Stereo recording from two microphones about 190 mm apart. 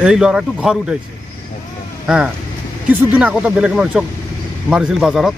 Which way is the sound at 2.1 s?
5° right (ahead or behind).